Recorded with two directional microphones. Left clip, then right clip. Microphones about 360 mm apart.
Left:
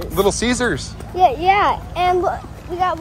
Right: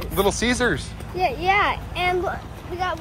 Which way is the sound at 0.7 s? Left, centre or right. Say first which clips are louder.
Left 2 dB; centre.